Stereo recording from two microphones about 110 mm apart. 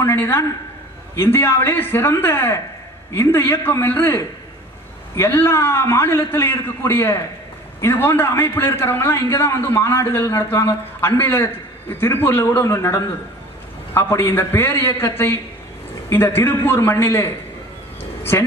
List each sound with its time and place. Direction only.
0.0 s a man's voice: 20° left (ahead or behind)